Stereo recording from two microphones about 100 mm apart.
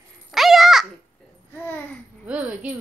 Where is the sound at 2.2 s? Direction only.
15° right (ahead or behind).